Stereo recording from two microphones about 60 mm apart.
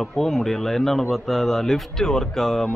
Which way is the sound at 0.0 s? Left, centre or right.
Centre.